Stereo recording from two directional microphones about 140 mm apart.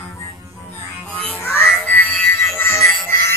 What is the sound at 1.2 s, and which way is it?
Music, 15° left (ahead or behind).